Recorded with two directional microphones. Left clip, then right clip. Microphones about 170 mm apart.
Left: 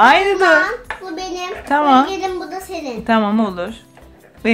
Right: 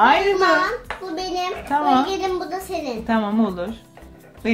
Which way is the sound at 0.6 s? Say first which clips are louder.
Left 4 dB; centre (ahead or behind).